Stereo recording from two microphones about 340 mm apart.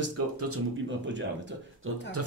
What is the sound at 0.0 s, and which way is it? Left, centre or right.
Speech, right.